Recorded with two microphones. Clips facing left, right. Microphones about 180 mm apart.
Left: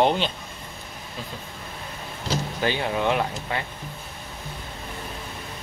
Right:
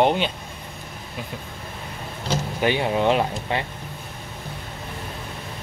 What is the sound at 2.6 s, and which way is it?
Speech, 20° right (ahead or behind).